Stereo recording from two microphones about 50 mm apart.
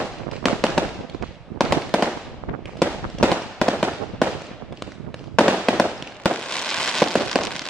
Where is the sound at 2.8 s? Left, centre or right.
Centre.